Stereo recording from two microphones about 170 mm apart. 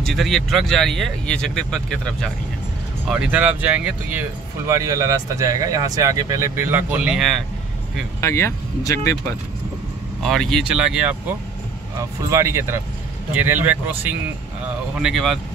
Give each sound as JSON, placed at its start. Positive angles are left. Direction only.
{"t": 0.0, "sound": "speech", "side_deg": 0}
{"t": 3.1, "sound": "speech", "side_deg": -5}
{"t": 8.2, "sound": "speech", "side_deg": 15}
{"t": 10.2, "sound": "speech", "side_deg": 0}
{"t": 12.0, "sound": "speech", "side_deg": -20}